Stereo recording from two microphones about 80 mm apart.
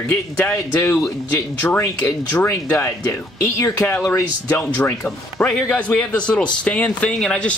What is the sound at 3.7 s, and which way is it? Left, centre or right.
Speech, left.